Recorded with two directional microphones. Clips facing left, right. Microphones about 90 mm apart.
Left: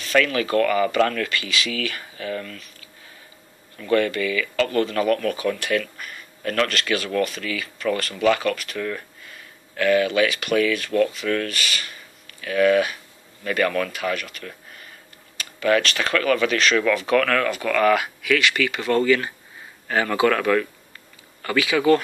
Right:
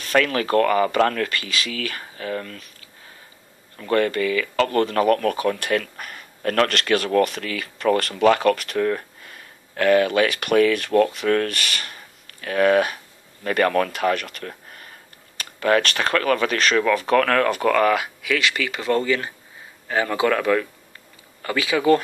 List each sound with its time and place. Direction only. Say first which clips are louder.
0.0 s speech: even; 45° right (ahead or behind)
3.7 s speech: even; 35° right (ahead or behind)
17.9 s speech: left 2 dB; 25° right (ahead or behind)